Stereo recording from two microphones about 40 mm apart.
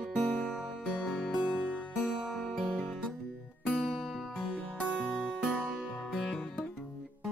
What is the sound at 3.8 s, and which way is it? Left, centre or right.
Music, centre.